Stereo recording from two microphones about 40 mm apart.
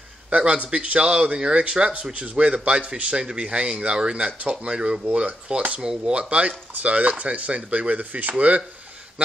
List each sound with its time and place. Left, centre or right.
0.3 s a man's voice: right
5.8 s a man's voice: centre; by 8.6 s right